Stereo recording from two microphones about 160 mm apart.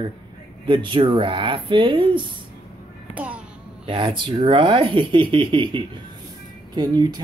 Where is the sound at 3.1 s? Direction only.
10° right (ahead or behind).